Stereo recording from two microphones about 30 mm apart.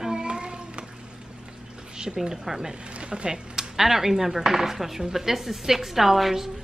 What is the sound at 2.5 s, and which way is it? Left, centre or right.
Speech, right.